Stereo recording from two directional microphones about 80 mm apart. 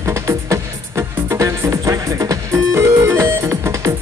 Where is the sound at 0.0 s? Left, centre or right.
Right.